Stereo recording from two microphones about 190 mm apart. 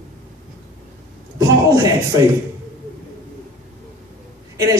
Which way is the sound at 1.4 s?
15° right (ahead or behind).